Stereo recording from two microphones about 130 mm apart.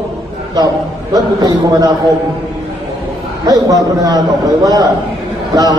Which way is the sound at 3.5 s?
25° right (ahead or behind).